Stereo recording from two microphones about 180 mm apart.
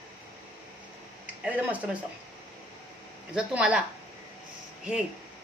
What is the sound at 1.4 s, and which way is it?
Speech, 10° right (ahead or behind).